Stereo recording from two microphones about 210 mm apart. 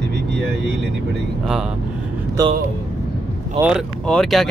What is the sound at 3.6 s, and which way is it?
Speech, 15° right (ahead or behind).